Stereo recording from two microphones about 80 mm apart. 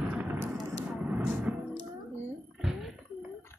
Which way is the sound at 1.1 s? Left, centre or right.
Centre.